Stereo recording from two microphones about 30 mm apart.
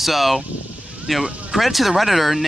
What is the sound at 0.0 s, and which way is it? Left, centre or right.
Speech, centre.